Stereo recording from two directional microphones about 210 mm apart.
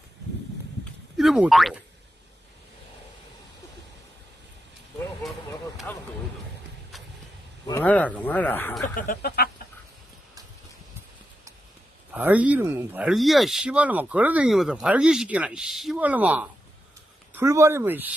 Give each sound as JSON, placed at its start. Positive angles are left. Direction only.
{"t": 1.1, "sound": "speech", "side_deg": 0}
{"t": 5.9, "sound": "vehicle", "side_deg": 10}
{"t": 7.6, "sound": "speech", "side_deg": 10}
{"t": 9.0, "sound": "a sound", "side_deg": 45}
{"t": 12.1, "sound": "speech", "side_deg": -5}